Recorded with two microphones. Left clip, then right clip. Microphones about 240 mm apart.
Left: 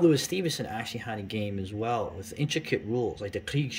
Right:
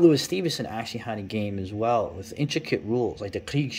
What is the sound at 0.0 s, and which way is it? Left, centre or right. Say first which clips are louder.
Speech: right 4 dB; centre.